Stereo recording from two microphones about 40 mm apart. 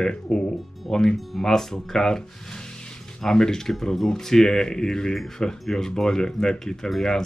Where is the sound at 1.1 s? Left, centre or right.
Centre.